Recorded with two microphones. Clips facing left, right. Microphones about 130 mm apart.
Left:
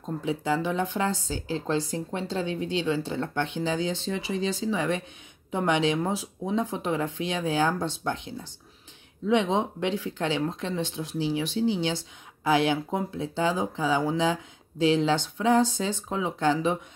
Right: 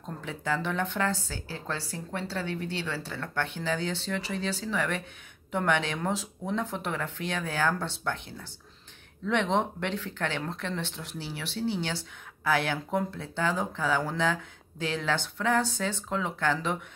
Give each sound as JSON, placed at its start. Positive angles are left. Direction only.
{"t": 0.0, "sound": "speech", "side_deg": 15}